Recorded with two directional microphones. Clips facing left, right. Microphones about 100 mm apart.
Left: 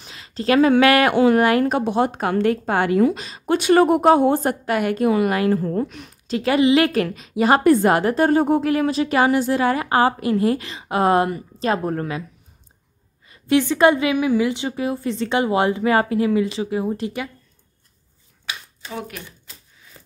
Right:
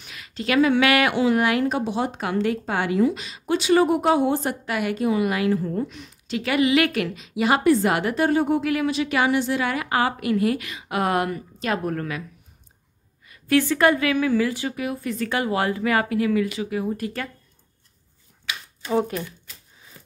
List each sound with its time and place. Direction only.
0.0 s speech: 30° left (ahead or behind); by 6.1 s 55° left (ahead or behind)
6.2 s a woman's voice: 35° left (ahead or behind)
13.3 s a woman's voice: 20° left (ahead or behind)
18.9 s speech: 30° right (ahead or behind)